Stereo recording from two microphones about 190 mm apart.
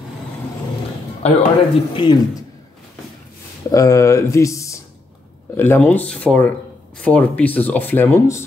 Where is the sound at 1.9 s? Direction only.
25° left (ahead or behind).